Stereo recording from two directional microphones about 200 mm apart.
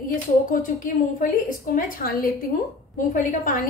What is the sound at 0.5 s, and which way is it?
A woman's voice, 45° left (ahead or behind).